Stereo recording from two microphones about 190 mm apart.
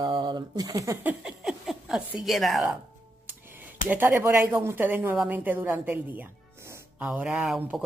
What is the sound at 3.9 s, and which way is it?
Speech, 10° right (ahead or behind).